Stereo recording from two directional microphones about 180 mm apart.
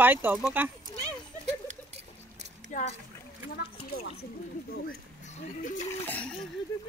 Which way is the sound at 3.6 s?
60° left (ahead or behind).